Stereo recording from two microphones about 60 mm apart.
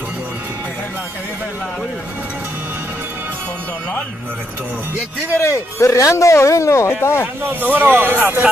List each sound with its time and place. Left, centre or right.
5.4 s speech: left
6.9 s speech: left
7.4 s a man's voice: right